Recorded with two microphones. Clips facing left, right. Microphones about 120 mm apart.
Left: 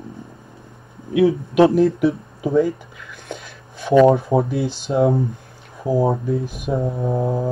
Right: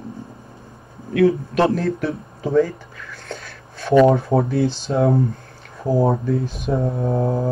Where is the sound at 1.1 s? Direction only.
15° left (ahead or behind).